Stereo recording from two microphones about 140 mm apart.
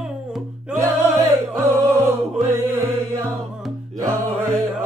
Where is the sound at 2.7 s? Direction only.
20° right (ahead or behind).